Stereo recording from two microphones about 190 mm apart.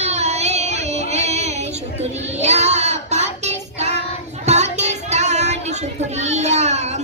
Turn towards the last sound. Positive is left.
turn(degrees=-35)  # may be behind; listen again after turning